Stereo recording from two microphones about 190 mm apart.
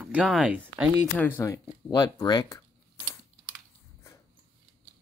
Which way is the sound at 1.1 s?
10° left (ahead or behind).